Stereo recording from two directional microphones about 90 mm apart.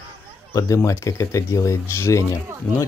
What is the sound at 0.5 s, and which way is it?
Speech, 40° left (ahead or behind).